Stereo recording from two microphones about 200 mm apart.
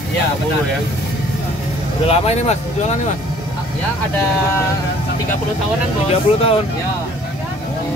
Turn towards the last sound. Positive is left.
turn(degrees=30)  # may be behind; listen again after turning